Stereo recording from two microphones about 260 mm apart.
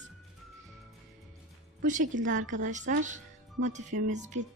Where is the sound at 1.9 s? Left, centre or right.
Right.